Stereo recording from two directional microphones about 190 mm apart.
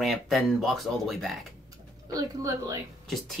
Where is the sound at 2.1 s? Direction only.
20° right (ahead or behind).